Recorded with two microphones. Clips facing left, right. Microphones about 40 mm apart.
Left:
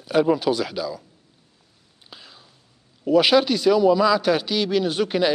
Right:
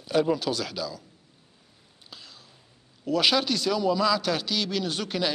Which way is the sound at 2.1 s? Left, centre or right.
Centre.